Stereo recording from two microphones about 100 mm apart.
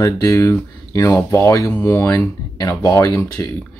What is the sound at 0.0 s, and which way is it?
Speech, 30° left (ahead or behind).